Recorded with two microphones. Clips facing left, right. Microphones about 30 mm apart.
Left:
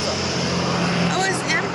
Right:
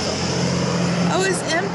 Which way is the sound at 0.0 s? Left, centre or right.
Centre.